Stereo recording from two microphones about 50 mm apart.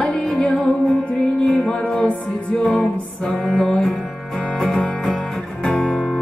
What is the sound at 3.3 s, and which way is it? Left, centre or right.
Music, centre.